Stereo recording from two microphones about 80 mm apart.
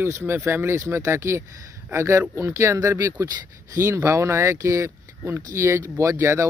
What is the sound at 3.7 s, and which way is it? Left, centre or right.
Speech, right.